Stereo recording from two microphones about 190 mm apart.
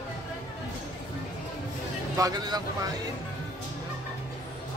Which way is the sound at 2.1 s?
20° right (ahead or behind).